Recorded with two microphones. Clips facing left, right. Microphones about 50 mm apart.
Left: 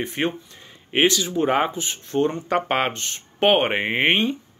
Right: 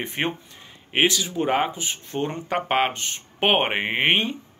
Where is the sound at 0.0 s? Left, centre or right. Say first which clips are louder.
Left 2 dB; right.